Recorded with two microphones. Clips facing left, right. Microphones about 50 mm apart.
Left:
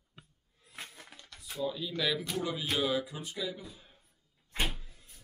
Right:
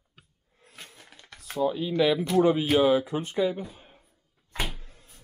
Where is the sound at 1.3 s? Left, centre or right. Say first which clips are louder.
Right 9 dB; right.